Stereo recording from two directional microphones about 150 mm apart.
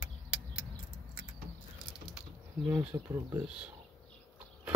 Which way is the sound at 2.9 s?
20° right (ahead or behind).